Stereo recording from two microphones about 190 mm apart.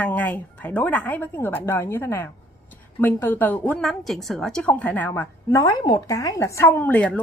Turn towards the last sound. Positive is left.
turn(degrees=10)  # may be behind; listen again after turning